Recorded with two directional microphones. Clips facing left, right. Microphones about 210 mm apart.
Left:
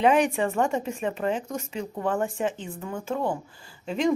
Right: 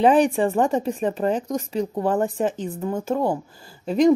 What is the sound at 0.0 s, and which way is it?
Speech, 35° right (ahead or behind).